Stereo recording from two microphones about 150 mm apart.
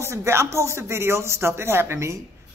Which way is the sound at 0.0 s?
20° right (ahead or behind).